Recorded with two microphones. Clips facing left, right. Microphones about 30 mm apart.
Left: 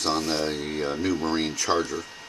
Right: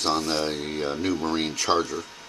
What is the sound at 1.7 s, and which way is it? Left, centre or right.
Speech, right.